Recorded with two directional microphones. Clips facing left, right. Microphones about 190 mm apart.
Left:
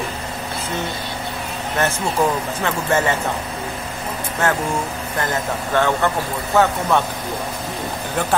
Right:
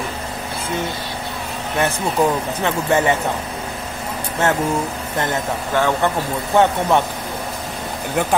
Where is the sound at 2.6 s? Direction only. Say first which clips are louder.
Right 2 dB; 15° right (ahead or behind).